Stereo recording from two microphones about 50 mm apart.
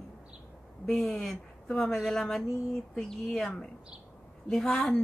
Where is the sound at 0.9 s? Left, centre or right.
Centre.